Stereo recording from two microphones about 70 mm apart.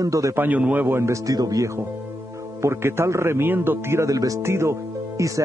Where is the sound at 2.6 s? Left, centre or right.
Right.